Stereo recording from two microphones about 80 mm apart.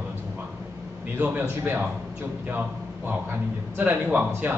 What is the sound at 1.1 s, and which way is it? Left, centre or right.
Speech, right.